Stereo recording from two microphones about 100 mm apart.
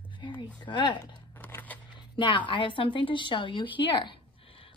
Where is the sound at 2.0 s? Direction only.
55° left (ahead or behind).